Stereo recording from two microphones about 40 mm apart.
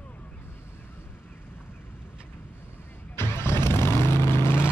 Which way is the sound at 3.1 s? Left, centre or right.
Left.